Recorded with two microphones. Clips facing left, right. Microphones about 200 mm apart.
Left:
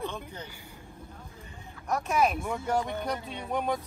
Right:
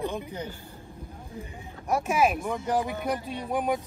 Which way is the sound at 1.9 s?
10° right (ahead or behind).